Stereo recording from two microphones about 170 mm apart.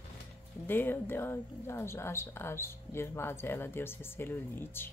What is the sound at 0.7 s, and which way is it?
Speech, 10° left (ahead or behind).